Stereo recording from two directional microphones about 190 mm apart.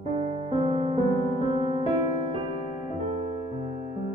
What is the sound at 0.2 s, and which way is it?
Music, 30° right (ahead or behind).